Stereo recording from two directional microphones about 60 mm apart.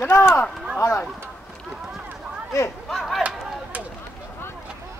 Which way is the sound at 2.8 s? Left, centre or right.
Centre.